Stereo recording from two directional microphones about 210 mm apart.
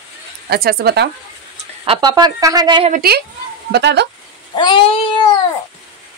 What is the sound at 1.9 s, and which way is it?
A woman's voice, 20° right (ahead or behind).